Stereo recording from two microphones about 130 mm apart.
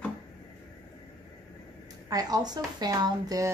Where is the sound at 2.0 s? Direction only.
30° right (ahead or behind).